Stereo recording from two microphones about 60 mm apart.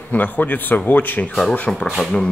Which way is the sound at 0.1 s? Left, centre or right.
Left.